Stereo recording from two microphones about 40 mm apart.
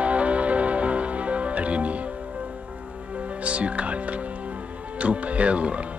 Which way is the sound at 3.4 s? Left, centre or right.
Right.